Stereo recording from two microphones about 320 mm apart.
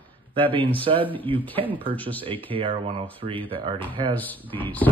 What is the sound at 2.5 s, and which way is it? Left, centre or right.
Speech, centre.